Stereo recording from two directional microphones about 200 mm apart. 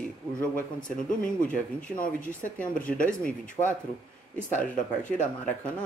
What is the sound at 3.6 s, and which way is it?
Speech, 30° left (ahead or behind).